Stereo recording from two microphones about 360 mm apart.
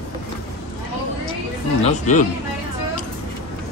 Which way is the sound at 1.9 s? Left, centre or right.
Centre.